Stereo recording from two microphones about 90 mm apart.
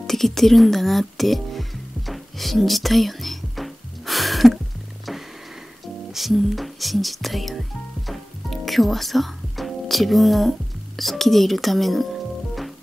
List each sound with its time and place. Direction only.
0.0 s music: 5° left (ahead or behind)
6.1 s speech: centre (ahead or behind)
8.1 s music: centre (ahead or behind)
11.0 s speech: centre (ahead or behind)